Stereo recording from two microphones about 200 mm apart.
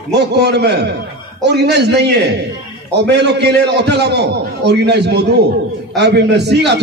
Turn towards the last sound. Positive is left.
turn(degrees=-55)  # may be behind; listen again after turning